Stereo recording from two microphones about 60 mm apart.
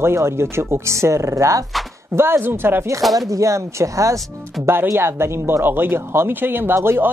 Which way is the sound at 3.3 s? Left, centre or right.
Right.